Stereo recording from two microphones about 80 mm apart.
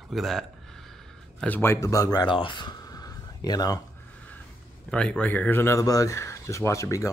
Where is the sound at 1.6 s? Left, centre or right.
Left.